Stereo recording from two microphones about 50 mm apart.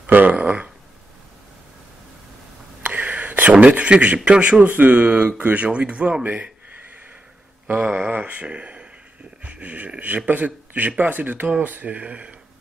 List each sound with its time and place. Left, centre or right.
0.0 s a sound: right
2.8 s whispering: right
3.5 s speech: right
7.6 s speech: right